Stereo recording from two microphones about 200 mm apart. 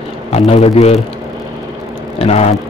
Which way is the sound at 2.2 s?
30° left (ahead or behind).